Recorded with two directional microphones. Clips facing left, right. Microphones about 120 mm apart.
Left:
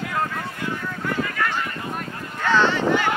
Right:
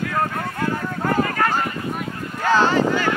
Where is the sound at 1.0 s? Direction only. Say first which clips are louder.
Right 5 dB; 45° right (ahead or behind).